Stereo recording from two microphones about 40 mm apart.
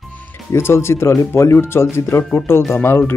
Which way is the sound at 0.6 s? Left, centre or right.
Left.